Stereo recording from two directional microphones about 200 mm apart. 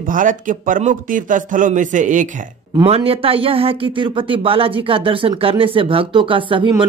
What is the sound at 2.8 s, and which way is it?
Speech, 30° right (ahead or behind).